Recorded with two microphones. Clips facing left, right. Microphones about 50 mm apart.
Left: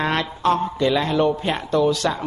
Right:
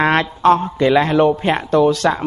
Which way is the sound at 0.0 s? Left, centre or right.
Right.